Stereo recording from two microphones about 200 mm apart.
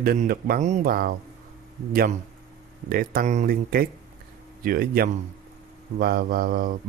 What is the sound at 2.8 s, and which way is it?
Speech, 50° right (ahead or behind).